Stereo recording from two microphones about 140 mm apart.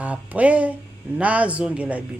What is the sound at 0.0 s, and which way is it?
Speech, 10° right (ahead or behind).